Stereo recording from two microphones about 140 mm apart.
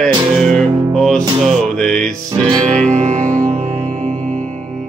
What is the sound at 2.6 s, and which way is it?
Music, 60° right (ahead or behind).